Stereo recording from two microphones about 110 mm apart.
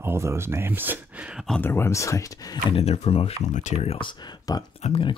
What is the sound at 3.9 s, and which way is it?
Speech, 50° left (ahead or behind).